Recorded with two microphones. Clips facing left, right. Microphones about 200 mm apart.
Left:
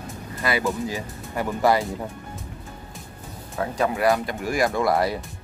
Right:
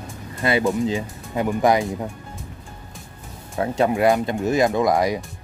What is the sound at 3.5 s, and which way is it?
Speech, 25° right (ahead or behind).